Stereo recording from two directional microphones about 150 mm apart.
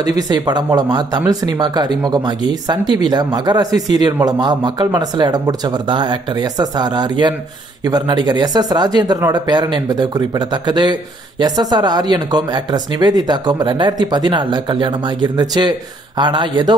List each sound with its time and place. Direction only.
0.0 s a man's voice: 25° right (ahead or behind)